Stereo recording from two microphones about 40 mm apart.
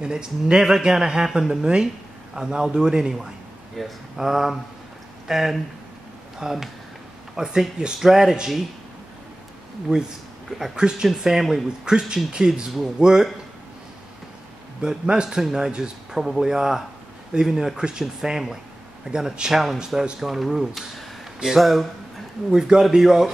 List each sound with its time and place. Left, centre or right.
0.0 s a man's voice: centre
3.8 s a man's voice: centre
6.4 s a man's voice: centre
9.9 s a man's voice: right
11.8 s a man's voice: centre
14.8 s a man's voice: right; by 21.8 s centre
22.5 s a man's voice: centre